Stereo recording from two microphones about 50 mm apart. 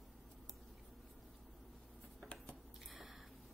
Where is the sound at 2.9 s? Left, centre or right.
Centre.